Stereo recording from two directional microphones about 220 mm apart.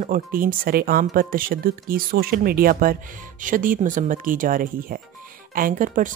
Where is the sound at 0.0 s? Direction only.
40° right (ahead or behind).